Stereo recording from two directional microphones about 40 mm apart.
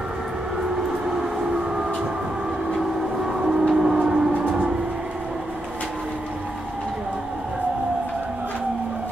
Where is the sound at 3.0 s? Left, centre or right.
Centre.